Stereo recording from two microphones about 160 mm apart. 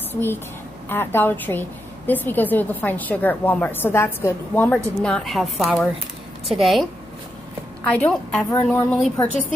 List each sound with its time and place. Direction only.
0.1 s a woman's voice: 15° left (ahead or behind)
7.9 s a woman's voice: 10° left (ahead or behind)